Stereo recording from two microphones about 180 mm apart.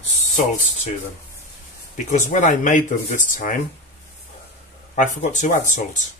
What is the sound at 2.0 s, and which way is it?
Speech, 45° left (ahead or behind).